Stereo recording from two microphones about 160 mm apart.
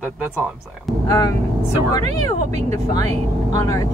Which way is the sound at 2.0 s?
45° right (ahead or behind).